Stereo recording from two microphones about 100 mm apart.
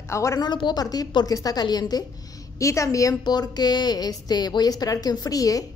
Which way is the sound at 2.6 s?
30° left (ahead or behind).